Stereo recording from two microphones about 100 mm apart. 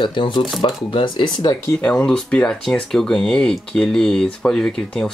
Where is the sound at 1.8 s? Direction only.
10° left (ahead or behind).